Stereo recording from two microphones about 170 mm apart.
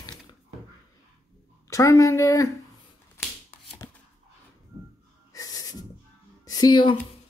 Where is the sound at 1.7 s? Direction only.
20° left (ahead or behind).